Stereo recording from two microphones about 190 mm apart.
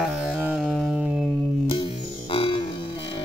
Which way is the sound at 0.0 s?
5° right (ahead or behind).